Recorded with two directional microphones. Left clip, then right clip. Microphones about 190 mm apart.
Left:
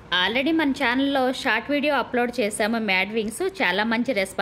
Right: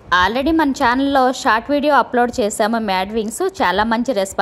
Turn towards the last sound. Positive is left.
turn(degrees=-10)  # may be behind; listen again after turning